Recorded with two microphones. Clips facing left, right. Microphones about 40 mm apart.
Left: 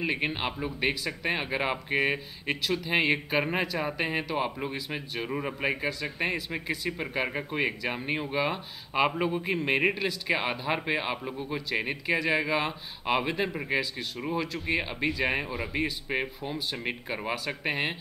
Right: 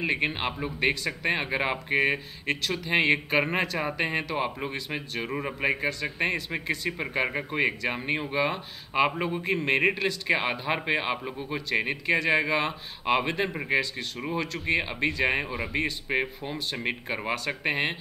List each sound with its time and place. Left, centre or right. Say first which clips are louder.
0.0 s speech: right 2 dB; centre
2.4 s speech: right 2 dB; centre
2.9 s a man's voice: right 4 dB; centre